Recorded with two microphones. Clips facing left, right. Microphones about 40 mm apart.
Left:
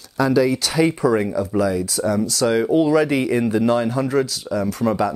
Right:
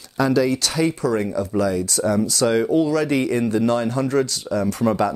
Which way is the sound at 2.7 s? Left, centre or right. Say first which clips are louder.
Left 3 dB; centre.